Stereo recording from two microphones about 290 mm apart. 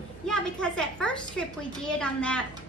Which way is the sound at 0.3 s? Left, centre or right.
Centre.